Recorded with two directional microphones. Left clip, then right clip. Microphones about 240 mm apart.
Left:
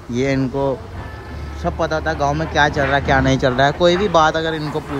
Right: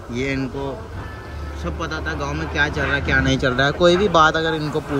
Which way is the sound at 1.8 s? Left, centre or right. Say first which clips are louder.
Left 7 dB; left.